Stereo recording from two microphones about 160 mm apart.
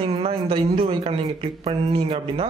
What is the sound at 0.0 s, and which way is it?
Speech, 35° right (ahead or behind).